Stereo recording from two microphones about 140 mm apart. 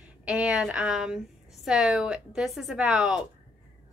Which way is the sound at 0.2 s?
10° right (ahead or behind).